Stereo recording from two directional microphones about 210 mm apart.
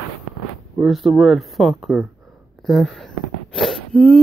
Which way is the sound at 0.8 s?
Centre (ahead or behind).